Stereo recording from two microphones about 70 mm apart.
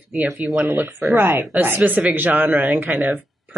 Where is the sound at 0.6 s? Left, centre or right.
Right.